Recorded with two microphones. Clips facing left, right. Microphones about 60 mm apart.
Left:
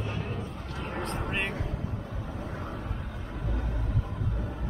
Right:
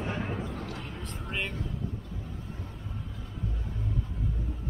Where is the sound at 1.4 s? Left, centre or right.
Left.